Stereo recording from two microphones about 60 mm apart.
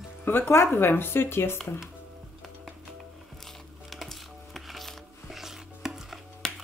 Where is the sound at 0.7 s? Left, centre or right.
Left.